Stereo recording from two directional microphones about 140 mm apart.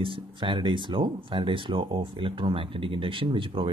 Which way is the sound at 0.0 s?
35° right (ahead or behind).